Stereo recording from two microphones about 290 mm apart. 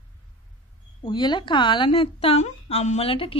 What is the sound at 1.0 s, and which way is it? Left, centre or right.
A woman's voice, centre.